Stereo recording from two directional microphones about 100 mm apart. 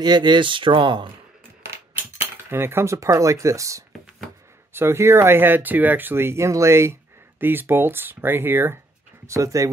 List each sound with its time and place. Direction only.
0.0 s speech: 50° right (ahead or behind)
1.6 s cutlery: 25° right (ahead or behind)
4.7 s speech: 25° right (ahead or behind)